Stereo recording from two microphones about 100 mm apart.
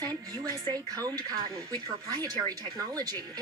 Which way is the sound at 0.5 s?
40° right (ahead or behind).